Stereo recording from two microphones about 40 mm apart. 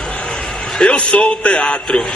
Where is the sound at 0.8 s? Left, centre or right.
Left.